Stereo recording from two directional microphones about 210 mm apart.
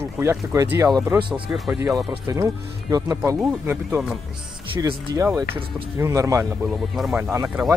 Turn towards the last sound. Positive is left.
turn(degrees=-15)  # may be behind; listen again after turning